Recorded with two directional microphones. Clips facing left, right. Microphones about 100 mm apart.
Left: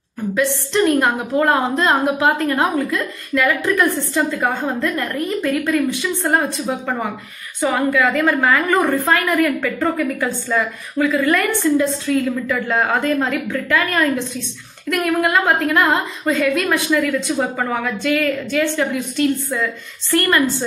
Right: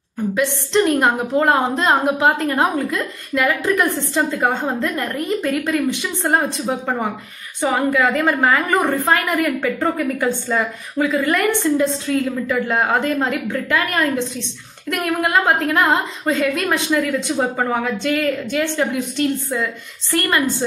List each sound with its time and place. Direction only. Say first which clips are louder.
0.9 s a woman's voice: even; 20° right (ahead or behind)